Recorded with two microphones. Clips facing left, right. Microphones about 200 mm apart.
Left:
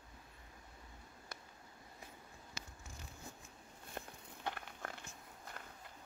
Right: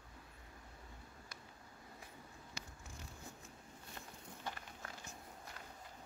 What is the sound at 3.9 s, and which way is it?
Walk, 60° left (ahead or behind).